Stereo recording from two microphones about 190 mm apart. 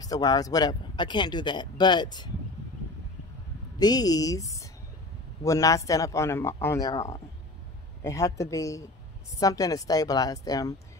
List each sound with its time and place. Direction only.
0.0 s speech: 20° left (ahead or behind)
3.8 s speech: 20° left (ahead or behind)